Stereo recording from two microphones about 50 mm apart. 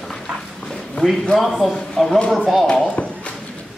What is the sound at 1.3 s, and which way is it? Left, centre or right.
A man's voice, centre.